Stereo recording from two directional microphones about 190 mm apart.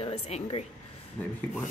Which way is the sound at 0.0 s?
30° left (ahead or behind).